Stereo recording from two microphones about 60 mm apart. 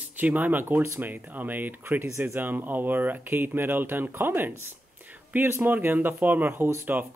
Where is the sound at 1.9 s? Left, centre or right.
Right.